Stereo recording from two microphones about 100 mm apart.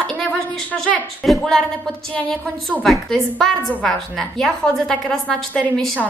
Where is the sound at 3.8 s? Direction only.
5° left (ahead or behind).